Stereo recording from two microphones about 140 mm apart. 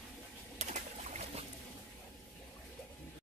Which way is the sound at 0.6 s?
55° right (ahead or behind).